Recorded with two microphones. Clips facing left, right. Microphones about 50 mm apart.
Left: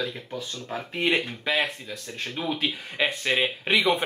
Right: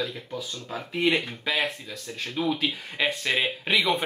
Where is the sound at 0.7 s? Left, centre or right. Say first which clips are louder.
Even; centre.